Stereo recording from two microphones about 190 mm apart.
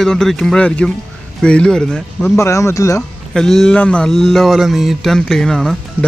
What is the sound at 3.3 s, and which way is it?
Speech, centre (ahead or behind).